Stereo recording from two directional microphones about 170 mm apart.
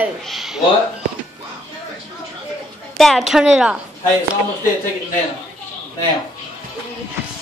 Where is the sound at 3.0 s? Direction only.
Centre (ahead or behind).